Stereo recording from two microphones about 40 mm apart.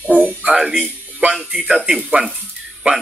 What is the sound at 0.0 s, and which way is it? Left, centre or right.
Music, right.